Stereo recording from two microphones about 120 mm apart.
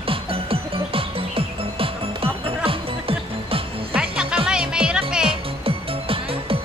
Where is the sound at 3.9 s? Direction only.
5° right (ahead or behind).